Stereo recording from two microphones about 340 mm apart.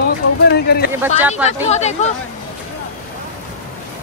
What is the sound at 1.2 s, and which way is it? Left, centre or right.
Speech, centre.